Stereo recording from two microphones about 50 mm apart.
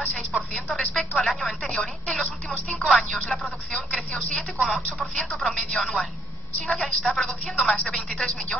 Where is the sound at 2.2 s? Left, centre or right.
Left.